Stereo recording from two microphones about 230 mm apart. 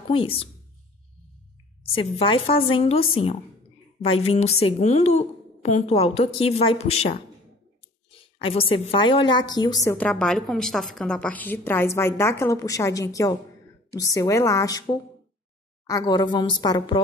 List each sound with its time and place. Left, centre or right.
0.1 s a woman's voice: left
2.0 s a woman's voice: left
15.9 s a woman's voice: centre